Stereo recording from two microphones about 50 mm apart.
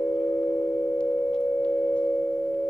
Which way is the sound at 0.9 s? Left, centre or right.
Left.